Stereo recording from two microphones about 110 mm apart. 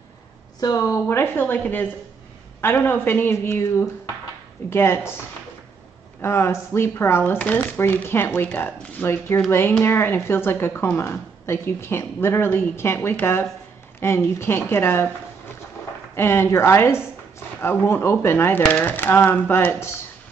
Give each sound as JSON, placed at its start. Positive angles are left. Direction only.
{"t": 0.6, "sound": "speech", "side_deg": 30}
{"t": 4.6, "sound": "speech", "side_deg": 20}
{"t": 6.2, "sound": "speech", "side_deg": 25}